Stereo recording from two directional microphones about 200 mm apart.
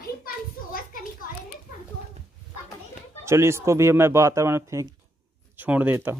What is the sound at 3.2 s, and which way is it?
Speech, 15° right (ahead or behind).